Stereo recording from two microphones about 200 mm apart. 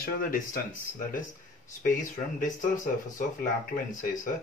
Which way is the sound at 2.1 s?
40° left (ahead or behind).